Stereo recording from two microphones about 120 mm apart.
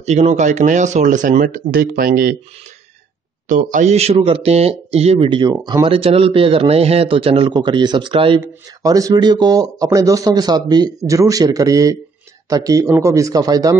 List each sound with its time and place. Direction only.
0.0 s speech: 70° right (ahead or behind); by 1.6 s 90° right
3.4 s speech: 90° right; by 5.5 s 45° right (ahead or behind)
5.5 s speech: 35° right (ahead or behind)
5.9 s a man's voice: 50° right (ahead or behind)
7.5 s speech: 40° right (ahead or behind)
8.4 s speech: 30° right (ahead or behind)